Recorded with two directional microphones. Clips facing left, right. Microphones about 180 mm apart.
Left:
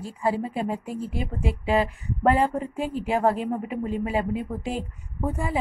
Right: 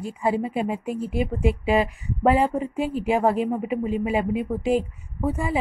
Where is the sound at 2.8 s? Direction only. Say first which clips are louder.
Right 2 dB; 40° left (ahead or behind).